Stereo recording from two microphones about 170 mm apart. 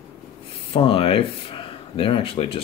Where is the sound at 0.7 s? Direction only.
30° left (ahead or behind).